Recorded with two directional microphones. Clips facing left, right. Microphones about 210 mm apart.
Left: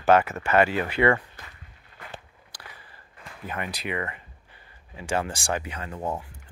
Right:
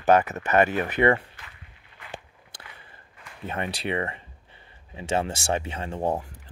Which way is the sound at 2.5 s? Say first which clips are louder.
Left 1 dB; 25° right (ahead or behind).